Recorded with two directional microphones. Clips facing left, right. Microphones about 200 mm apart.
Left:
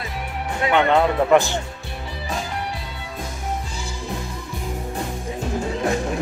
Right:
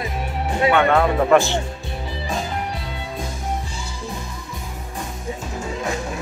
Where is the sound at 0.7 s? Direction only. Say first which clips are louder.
Left 2 dB; 20° left (ahead or behind).